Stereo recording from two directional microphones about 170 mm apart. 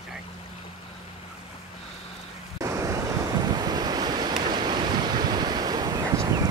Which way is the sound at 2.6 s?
20° right (ahead or behind).